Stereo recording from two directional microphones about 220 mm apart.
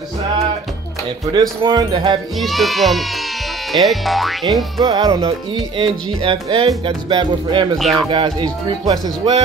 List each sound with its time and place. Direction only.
1.2 s speech: 20° right (ahead or behind)
2.3 s speech: centre (ahead or behind)
4.7 s speech: 20° right (ahead or behind)
7.7 s speech: centre (ahead or behind)
8.1 s speech: 20° right (ahead or behind)